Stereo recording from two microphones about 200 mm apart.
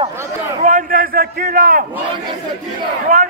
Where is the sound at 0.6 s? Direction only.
45° right (ahead or behind).